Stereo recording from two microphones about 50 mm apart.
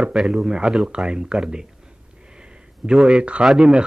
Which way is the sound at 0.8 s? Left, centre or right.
Centre.